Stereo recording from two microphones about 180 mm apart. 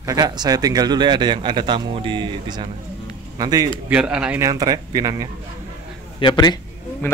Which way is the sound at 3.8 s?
5° right (ahead or behind).